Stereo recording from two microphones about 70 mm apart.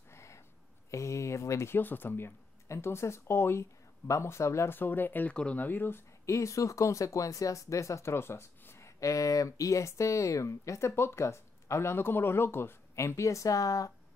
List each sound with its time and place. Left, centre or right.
0.1 s a sound: left
0.8 s speech: left
1.8 s speech: left
4.7 s speech: left
5.3 s speech: centre
5.6 s speech: left
10.9 s speech: left